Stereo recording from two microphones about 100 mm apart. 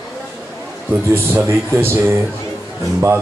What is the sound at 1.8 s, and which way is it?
Speech, 20° right (ahead or behind).